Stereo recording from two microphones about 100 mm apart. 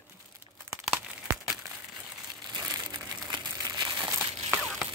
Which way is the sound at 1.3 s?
30° right (ahead or behind).